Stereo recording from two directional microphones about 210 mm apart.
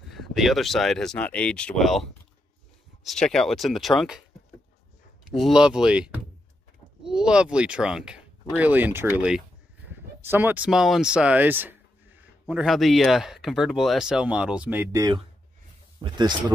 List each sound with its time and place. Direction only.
0.1 s speech: centre (ahead or behind)
5.3 s speech: centre (ahead or behind); by 16.5 s 20° right (ahead or behind)